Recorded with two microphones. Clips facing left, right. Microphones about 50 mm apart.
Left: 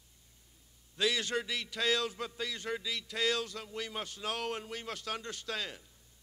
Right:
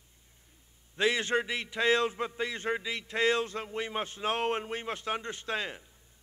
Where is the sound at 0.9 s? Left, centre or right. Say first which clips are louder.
Right 5 dB; right.